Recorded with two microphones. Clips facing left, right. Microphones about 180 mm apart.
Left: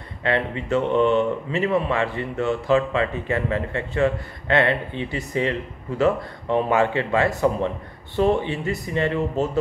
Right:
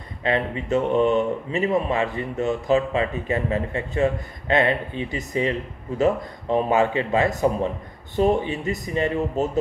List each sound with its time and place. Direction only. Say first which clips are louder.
0.2 s speech: even; 20° right (ahead or behind)
0.7 s a sound: even; 40° right (ahead or behind)
1.5 s speech: right 2 dB; 20° right (ahead or behind)